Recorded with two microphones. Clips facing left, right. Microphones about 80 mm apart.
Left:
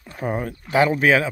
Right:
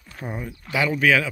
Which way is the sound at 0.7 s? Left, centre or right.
Left.